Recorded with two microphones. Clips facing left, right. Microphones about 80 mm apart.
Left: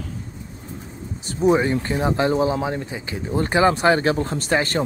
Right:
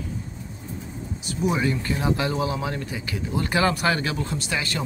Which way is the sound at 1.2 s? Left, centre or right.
Left.